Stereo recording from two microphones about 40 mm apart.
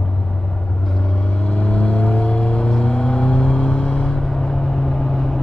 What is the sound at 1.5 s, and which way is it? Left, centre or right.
Vehicle, left.